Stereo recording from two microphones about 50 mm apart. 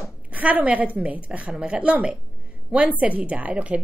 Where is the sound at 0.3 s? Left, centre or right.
Right.